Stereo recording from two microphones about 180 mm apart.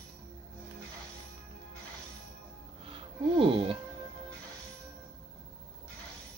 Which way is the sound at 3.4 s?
30° right (ahead or behind).